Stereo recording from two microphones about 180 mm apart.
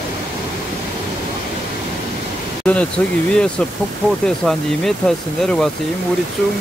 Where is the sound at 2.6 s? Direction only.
5° left (ahead or behind).